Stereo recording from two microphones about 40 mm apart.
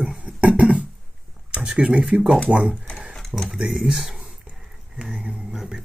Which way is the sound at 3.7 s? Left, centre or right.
Centre.